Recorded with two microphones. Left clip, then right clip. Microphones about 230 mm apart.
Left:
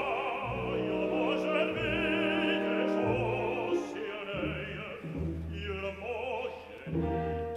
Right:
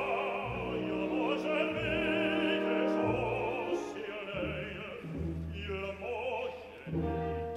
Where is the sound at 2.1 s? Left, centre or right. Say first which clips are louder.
Left 1 dB; centre.